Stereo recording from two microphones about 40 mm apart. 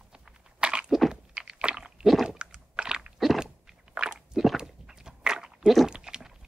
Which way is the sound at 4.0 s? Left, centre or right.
Right.